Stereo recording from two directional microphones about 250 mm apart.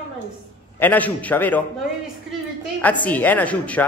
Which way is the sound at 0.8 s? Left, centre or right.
Centre.